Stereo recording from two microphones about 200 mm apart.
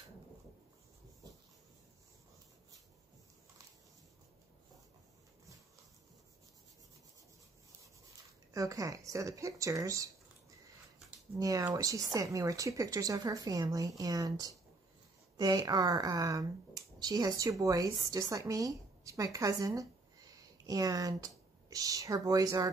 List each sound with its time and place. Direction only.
8.5 s speech: 15° right (ahead or behind)
11.3 s speech: 15° right (ahead or behind)